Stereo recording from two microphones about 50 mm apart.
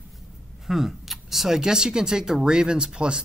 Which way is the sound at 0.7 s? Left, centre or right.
Centre.